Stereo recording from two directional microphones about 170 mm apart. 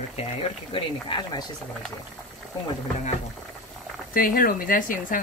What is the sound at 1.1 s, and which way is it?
Speech, 25° left (ahead or behind).